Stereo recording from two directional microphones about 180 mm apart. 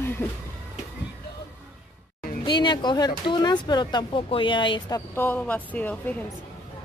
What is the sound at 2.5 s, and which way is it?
Speech, 25° left (ahead or behind).